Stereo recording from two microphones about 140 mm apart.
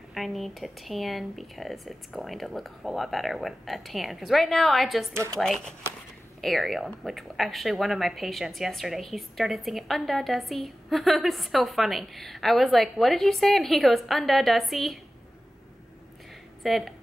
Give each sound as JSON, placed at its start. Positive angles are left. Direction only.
{"t": 0.1, "sound": "speech", "side_deg": 0}
{"t": 5.1, "sound": "speech", "side_deg": -20}
{"t": 5.4, "sound": "speech", "side_deg": 5}
{"t": 16.6, "sound": "speech", "side_deg": 0}